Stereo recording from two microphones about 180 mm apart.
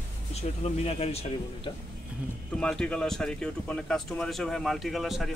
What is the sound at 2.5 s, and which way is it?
Speech, 5° left (ahead or behind).